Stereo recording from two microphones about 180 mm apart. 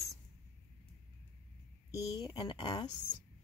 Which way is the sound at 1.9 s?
25° left (ahead or behind).